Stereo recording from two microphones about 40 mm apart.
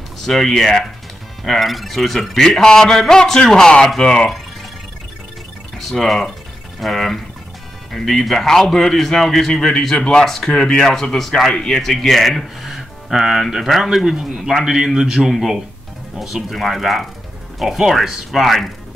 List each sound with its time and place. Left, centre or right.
0.2 s a man's voice: centre
5.8 s a man's voice: centre
9.9 s speech: left
10.2 s a man's voice: centre
12.6 s speech: centre
16.4 s speech: centre